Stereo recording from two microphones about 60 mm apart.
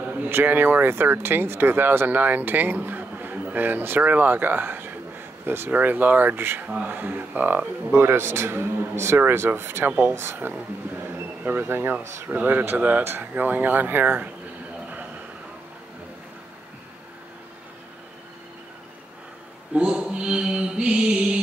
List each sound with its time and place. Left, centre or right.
0.0 s a sound: right
0.3 s speech: right
10.1 s speech: right
19.7 s mantra: centre